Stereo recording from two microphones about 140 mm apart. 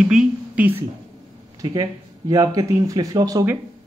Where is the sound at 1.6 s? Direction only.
25° right (ahead or behind).